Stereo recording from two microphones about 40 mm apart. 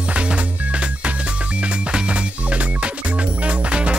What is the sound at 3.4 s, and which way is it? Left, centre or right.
Music, right.